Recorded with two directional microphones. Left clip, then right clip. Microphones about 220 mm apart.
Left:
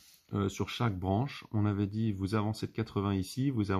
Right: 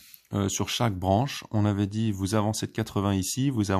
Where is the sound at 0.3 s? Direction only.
40° right (ahead or behind).